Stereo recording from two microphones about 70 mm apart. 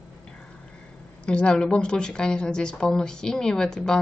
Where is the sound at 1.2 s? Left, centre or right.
Centre.